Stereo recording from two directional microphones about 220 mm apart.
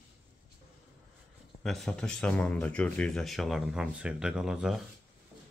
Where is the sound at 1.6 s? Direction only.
Centre (ahead or behind).